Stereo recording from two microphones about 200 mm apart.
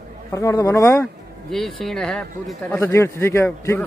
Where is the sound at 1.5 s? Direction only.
Centre (ahead or behind).